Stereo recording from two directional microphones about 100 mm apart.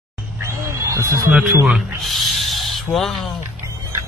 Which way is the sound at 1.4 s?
20° right (ahead or behind).